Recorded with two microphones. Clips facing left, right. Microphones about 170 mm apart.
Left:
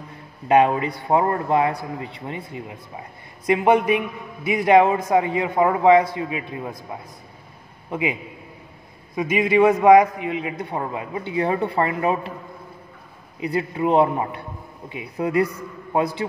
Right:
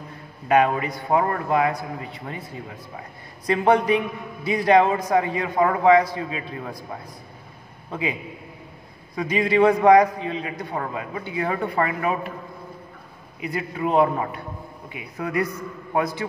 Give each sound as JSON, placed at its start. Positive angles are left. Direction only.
{"t": 0.5, "sound": "a man's voice", "side_deg": 25}
{"t": 3.4, "sound": "a man's voice", "side_deg": 20}
{"t": 9.1, "sound": "a man's voice", "side_deg": 20}
{"t": 13.4, "sound": "a man's voice", "side_deg": 25}